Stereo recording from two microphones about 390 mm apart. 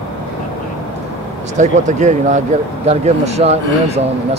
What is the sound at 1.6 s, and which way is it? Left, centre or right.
Speech, centre.